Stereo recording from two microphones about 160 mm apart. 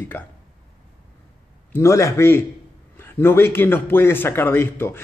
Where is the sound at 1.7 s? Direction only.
20° left (ahead or behind).